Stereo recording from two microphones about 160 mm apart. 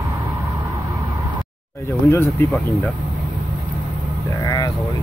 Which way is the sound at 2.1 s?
15° left (ahead or behind).